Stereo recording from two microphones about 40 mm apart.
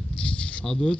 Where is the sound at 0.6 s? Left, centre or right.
Centre.